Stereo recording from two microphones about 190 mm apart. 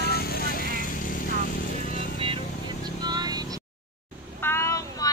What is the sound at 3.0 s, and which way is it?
Vehicle, 20° right (ahead or behind).